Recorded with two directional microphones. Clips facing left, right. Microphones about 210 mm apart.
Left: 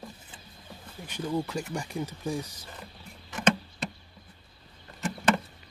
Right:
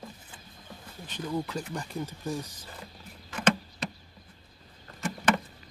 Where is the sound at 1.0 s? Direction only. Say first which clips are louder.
Left 2 dB; 10° left (ahead or behind).